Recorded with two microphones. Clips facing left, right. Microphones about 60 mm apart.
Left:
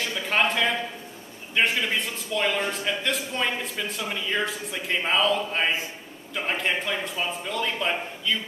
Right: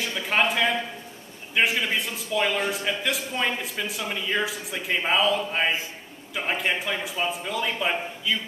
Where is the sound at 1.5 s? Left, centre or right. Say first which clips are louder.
Even; centre.